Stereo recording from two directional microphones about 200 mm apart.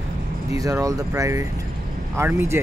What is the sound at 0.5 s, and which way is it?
Speech, 15° right (ahead or behind).